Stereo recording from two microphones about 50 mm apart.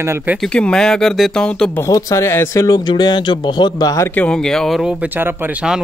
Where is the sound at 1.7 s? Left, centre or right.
Left.